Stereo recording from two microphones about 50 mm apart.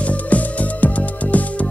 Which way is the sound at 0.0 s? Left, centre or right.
Left.